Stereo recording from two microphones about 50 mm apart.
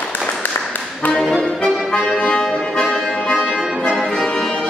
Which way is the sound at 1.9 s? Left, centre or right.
Left.